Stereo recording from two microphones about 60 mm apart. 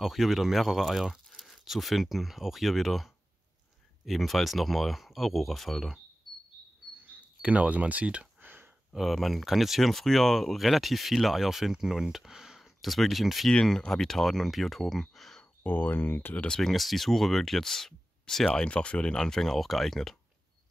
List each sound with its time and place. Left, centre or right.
0.0 s speech: centre
6.3 s bird: centre
7.1 s speech: right
8.4 s a sound: right
8.9 s speech: centre
13.5 s speech: centre
15.6 s speech: left
16.3 s speech: centre
18.6 s speech: centre